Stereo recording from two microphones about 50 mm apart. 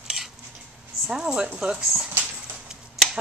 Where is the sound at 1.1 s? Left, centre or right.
Centre.